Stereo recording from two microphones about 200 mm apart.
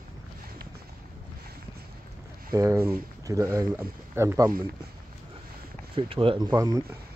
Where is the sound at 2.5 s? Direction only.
15° right (ahead or behind).